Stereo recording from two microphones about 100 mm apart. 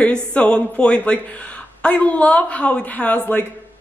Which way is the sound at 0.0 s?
10° left (ahead or behind).